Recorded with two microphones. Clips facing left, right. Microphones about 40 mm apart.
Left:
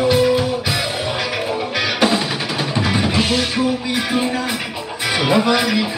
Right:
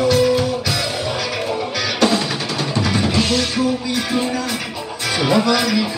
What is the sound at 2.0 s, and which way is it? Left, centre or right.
Music, centre.